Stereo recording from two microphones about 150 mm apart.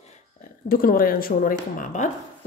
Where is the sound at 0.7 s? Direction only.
75° left (ahead or behind); by 2.1 s 55° left (ahead or behind).